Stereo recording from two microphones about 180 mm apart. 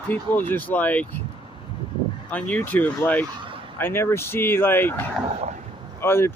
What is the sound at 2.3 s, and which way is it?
Speech, 10° left (ahead or behind).